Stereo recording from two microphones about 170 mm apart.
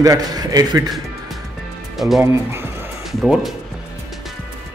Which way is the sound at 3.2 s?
Centre (ahead or behind).